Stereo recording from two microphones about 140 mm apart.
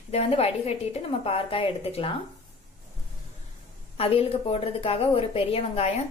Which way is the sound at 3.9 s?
45° left (ahead or behind).